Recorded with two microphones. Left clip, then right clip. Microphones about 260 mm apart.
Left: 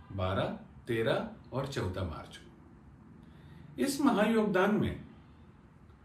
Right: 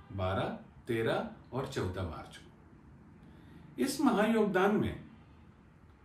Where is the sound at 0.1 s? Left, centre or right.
Centre.